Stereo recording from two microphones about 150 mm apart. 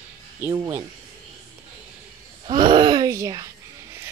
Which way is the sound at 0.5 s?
30° right (ahead or behind).